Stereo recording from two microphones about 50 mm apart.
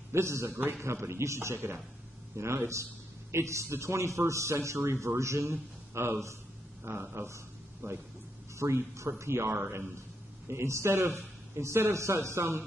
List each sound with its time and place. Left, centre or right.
0.1 s a man's voice: right
2.3 s a man's voice: right
4.3 s a man's voice: right
5.0 s a man's voice: right
10.5 s a man's voice: right
11.5 s a man's voice: right